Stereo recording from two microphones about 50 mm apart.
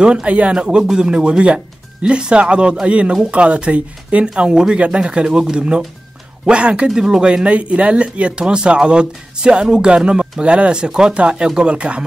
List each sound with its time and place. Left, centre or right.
0.0 s speech: right